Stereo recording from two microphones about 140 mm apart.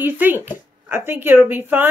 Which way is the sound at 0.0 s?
15° right (ahead or behind).